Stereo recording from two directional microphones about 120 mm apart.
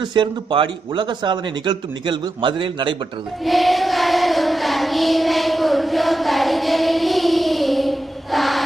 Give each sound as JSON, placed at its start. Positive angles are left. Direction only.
{"t": 0.0, "sound": "speech", "side_deg": -40}
{"t": 3.4, "sound": "child singing", "side_deg": 0}